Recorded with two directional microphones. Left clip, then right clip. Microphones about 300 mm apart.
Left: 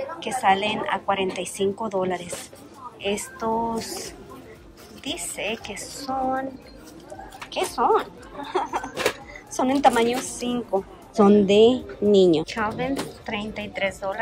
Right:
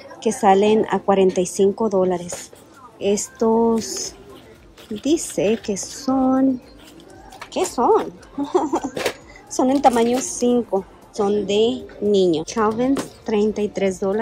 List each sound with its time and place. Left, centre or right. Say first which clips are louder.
0.2 s a woman's voice: right 6 dB; centre
4.9 s speech: right 11 dB; centre
7.5 s a woman's voice: right 4 dB; centre